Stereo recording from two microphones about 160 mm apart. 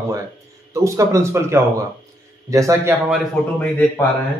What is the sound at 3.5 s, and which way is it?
Speech, 10° left (ahead or behind).